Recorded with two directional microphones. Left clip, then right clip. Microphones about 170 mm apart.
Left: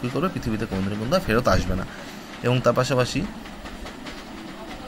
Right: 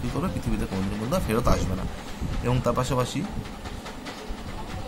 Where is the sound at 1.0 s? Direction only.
15° left (ahead or behind).